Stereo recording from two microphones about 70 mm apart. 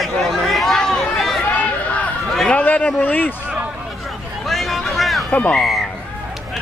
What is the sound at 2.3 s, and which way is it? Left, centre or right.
Speech, centre.